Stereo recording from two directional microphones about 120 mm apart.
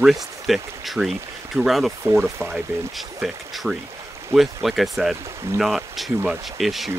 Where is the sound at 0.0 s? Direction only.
Centre (ahead or behind).